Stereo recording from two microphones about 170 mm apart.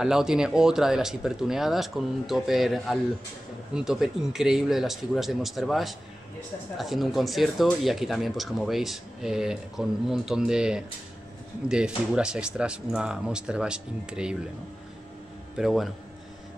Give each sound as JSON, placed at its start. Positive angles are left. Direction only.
{"t": 0.0, "sound": "speech", "side_deg": -5}
{"t": 15.5, "sound": "speech", "side_deg": 0}